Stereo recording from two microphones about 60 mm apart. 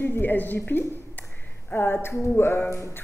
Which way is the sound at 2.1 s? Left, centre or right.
Left.